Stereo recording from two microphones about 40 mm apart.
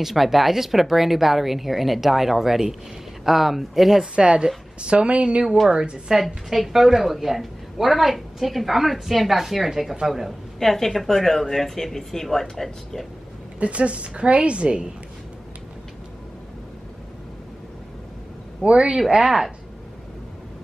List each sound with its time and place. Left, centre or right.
0.0 s a woman's voice: centre
4.1 s a woman's voice: right
5.7 s a woman's voice: right
6.1 s a woman's voice: centre
10.6 s speech: centre
13.6 s a woman's voice: right
18.6 s a woman's voice: right
19.0 s speech: centre